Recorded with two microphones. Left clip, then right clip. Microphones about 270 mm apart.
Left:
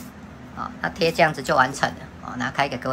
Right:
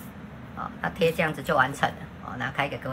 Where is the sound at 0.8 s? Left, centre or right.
Centre.